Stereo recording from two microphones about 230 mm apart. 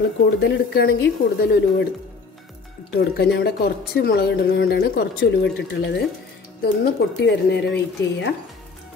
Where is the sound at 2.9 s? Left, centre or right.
Left.